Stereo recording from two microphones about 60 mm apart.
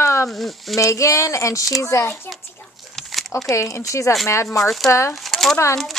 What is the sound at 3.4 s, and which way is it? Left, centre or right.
Speech, left.